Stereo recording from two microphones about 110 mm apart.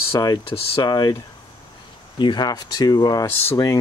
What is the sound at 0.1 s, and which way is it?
Speech, 35° left (ahead or behind).